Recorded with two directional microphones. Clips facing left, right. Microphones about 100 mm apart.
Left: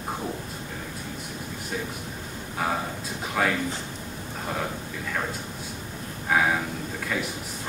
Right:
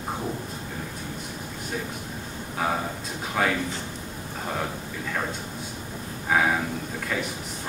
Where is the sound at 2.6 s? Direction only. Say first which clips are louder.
Right 1 dB; centre (ahead or behind).